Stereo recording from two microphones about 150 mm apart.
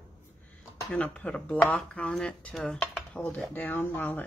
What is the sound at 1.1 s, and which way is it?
Speech, 10° left (ahead or behind).